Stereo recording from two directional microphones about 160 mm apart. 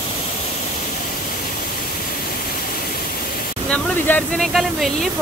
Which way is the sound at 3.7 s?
10° left (ahead or behind).